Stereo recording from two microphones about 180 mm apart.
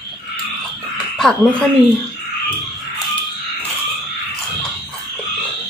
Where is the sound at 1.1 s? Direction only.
Centre (ahead or behind).